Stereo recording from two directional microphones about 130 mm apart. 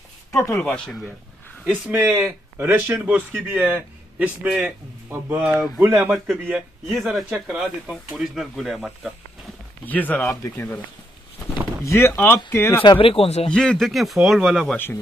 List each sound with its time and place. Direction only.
0.3 s speech: 25° left (ahead or behind)
0.6 s speech: 5° left (ahead or behind)
1.7 s a man's voice: 15° right (ahead or behind)
5.8 s a man's voice: 15° right (ahead or behind)
6.0 s speech: centre (ahead or behind)
9.8 s speech: 15° left (ahead or behind)
12.8 s speech: 40° left (ahead or behind)
13.5 s speech: 5° left (ahead or behind)